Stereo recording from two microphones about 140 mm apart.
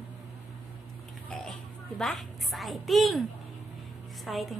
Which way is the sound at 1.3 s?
5° left (ahead or behind).